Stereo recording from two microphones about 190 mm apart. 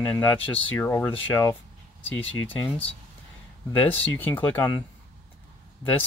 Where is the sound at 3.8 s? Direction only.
10° left (ahead or behind).